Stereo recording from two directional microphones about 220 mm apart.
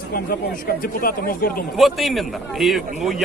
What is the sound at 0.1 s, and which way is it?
Speech, 40° left (ahead or behind).